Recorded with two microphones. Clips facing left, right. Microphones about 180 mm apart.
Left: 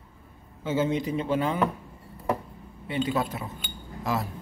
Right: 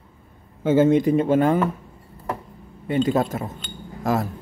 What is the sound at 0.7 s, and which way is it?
Speech, 50° right (ahead or behind).